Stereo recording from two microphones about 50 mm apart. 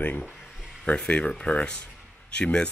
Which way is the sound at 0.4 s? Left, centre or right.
Centre.